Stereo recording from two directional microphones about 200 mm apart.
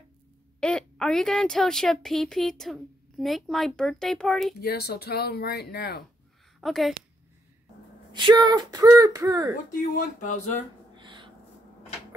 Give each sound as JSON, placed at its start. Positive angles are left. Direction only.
{"t": 0.6, "sound": "a woman's voice", "side_deg": 5}
{"t": 4.6, "sound": "speech", "side_deg": 50}
{"t": 6.6, "sound": "a woman's voice", "side_deg": 0}
{"t": 8.1, "sound": "speech", "side_deg": -25}
{"t": 9.7, "sound": "speech", "side_deg": 40}
{"t": 11.0, "sound": "a sound", "side_deg": -25}